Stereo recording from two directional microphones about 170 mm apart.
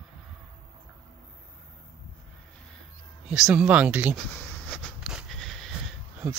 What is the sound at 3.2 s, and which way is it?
Speech, 5° right (ahead or behind).